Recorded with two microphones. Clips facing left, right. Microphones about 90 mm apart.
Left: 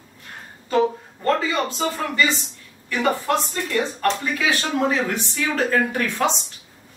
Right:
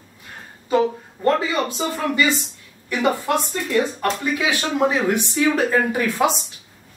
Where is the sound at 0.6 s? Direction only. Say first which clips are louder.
Right 1 dB; 15° right (ahead or behind).